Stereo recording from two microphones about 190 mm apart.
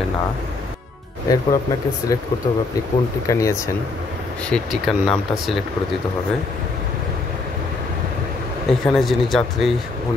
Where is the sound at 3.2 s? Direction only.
15° left (ahead or behind).